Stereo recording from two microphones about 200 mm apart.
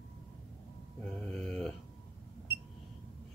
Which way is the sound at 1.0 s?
5° left (ahead or behind).